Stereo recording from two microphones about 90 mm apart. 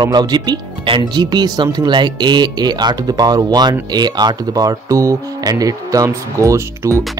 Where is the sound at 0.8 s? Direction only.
65° right (ahead or behind); by 7.0 s 35° right (ahead or behind).